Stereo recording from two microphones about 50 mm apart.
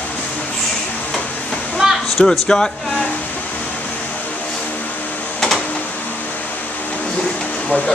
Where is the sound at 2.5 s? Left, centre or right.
Centre.